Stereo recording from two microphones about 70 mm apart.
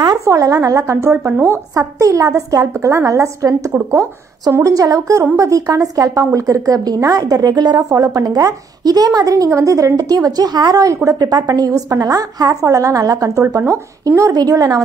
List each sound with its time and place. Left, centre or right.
0.2 s a woman's voice: right
7.9 s speech: right
9.5 s a woman's voice: right
14.3 s speech: right